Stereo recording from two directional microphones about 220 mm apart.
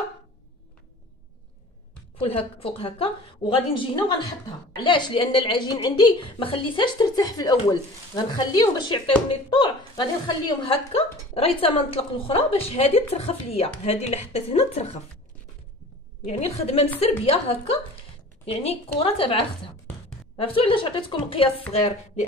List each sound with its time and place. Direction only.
2.1 s a woman's voice: 25° left (ahead or behind)
16.3 s a woman's voice: 30° left (ahead or behind)